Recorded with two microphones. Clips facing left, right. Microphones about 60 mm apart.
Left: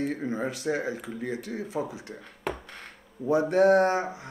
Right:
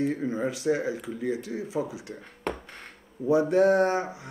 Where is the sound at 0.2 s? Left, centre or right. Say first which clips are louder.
Right 2 dB; left.